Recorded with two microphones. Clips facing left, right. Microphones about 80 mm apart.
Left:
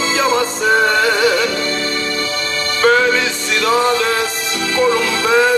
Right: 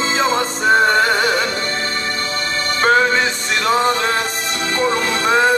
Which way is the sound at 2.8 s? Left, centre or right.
Right.